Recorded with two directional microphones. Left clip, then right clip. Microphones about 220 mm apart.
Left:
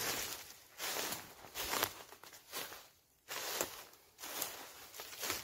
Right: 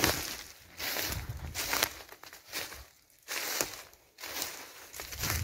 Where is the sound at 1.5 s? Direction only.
45° right (ahead or behind).